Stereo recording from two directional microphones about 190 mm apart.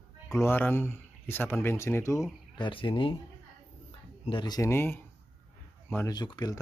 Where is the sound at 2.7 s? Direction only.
25° left (ahead or behind).